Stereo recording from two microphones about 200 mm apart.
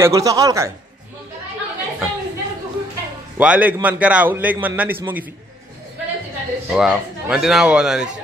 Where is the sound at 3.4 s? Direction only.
5° right (ahead or behind).